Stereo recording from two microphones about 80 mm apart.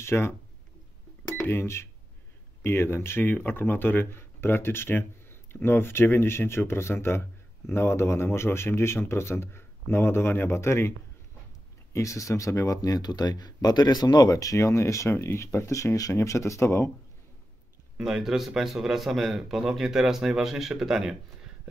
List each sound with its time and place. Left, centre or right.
0.0 s speech: left
1.5 s speech: left
17.9 s speech: centre